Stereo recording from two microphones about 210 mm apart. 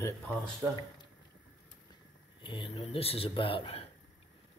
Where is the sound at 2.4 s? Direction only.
25° left (ahead or behind).